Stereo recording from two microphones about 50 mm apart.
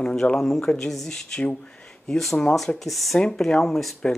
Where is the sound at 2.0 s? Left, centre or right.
Centre.